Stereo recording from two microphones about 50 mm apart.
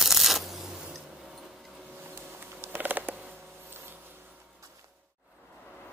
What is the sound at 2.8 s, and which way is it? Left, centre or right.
Creak, right.